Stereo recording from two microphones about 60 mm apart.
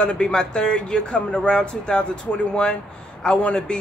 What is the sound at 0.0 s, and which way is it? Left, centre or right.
Speech, centre.